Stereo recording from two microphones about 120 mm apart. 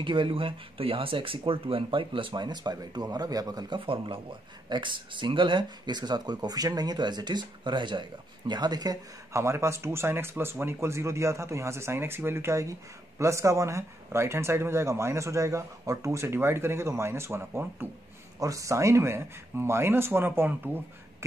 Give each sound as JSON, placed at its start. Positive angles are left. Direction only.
{"t": 0.0, "sound": "speech", "side_deg": -45}
{"t": 3.8, "sound": "speech", "side_deg": -45}